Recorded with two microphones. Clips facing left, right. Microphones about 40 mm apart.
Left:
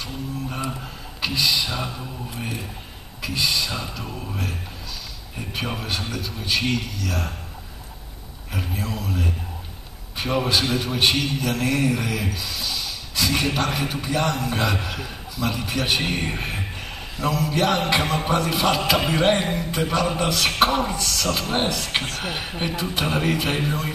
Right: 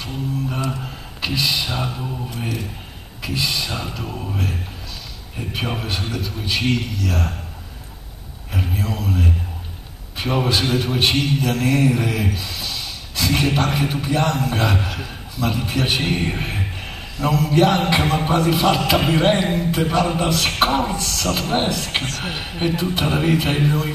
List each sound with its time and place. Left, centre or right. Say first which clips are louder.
1.2 s a man's voice: right 1 dB; centre
3.2 s a man's voice: even; centre
8.5 s a sound: right 4 dB; centre
10.1 s a man's voice: right 2 dB; centre